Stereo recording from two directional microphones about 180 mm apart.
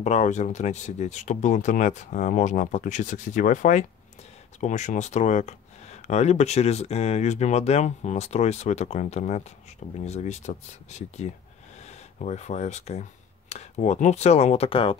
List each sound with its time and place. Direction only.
0.0 s speech: 40° left (ahead or behind)